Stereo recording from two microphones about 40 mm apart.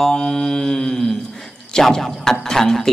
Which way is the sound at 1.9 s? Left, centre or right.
Centre.